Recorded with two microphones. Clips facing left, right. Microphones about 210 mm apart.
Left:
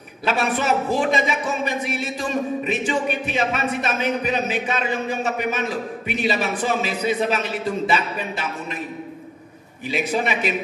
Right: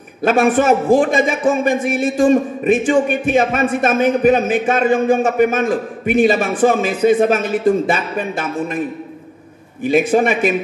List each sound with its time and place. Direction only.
0.2 s a man's voice: 50° right (ahead or behind)
9.8 s a man's voice: 50° right (ahead or behind)